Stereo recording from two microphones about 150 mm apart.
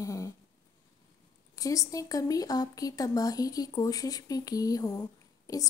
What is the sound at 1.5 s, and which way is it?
Speech, 20° left (ahead or behind).